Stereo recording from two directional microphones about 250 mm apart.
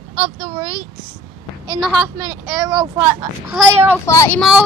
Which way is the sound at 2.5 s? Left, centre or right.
Centre.